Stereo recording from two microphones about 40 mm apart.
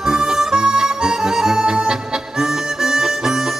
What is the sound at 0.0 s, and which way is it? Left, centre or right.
Music, centre.